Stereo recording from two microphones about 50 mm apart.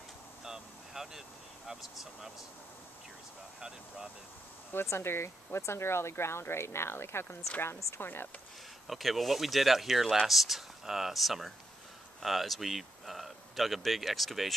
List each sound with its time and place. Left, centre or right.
0.4 s vehicle: centre
1.7 s speech: centre
4.8 s speech: left
8.8 s speech: centre